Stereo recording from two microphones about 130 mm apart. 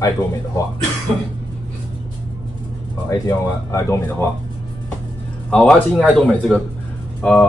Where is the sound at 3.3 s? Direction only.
20° left (ahead or behind).